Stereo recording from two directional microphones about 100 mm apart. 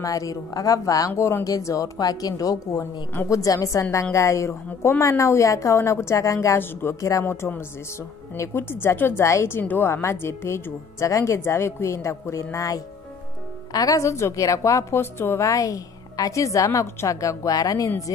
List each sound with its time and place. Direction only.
0.0 s a woman's voice: 35° left (ahead or behind)